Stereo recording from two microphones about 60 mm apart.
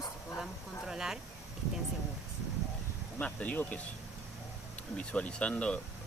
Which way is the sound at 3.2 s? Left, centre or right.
Left.